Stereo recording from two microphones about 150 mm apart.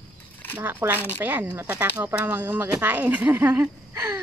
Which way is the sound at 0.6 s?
15° right (ahead or behind).